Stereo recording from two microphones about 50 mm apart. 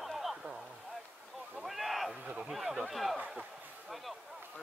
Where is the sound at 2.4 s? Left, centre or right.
Centre.